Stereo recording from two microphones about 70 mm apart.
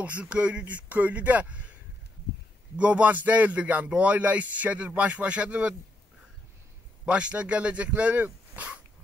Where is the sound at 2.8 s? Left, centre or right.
Centre.